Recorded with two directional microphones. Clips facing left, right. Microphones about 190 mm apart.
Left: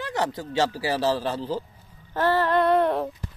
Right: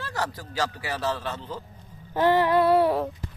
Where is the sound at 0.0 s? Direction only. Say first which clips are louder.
Left 4 dB; 20° left (ahead or behind).